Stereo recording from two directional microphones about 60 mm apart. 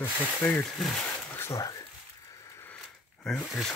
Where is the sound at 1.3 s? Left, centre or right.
Left.